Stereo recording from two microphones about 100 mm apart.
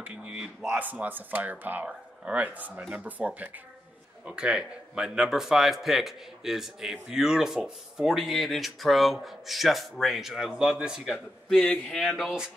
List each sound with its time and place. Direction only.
0.0 s speech: 10° right (ahead or behind)